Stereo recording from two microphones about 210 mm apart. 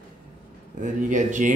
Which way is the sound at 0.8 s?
35° right (ahead or behind).